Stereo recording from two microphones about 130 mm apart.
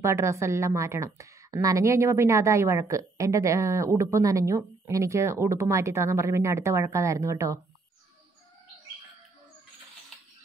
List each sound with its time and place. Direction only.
0.0 s a woman's voice: 20° right (ahead or behind)